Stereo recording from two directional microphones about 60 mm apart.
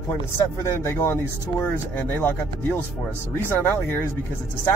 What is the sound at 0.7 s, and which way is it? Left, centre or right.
Speech, left.